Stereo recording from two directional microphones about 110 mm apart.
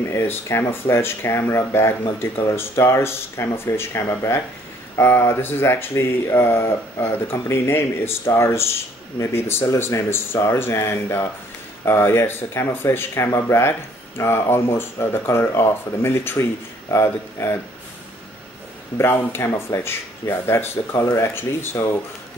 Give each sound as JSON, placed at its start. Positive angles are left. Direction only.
{"t": 0.1, "sound": "speech", "side_deg": 25}
{"t": 18.9, "sound": "speech", "side_deg": 25}